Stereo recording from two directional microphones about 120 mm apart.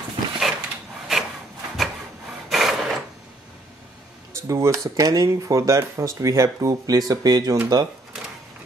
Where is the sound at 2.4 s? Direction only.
Centre (ahead or behind).